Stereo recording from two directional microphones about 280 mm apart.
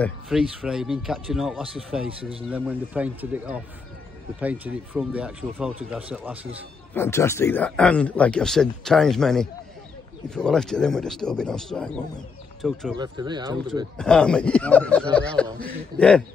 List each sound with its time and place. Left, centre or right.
0.0 s a man's voice: centre
6.9 s a man's voice: centre
12.9 s speech: centre
13.9 s a man's voice: centre